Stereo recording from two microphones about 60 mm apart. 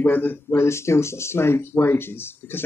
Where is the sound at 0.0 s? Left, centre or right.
Left.